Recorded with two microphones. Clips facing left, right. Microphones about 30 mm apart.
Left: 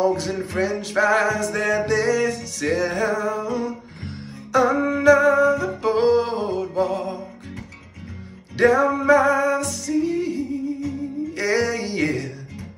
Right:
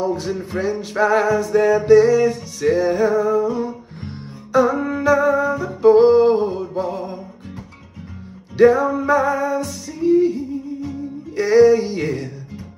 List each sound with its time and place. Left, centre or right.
0.1 s music: left
4.6 s a sound: left
5.0 s music: left
6.0 s music: left
8.6 s music: left
11.6 s a sound: left